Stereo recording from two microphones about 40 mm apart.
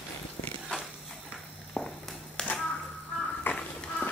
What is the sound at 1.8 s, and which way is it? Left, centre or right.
Walk, centre.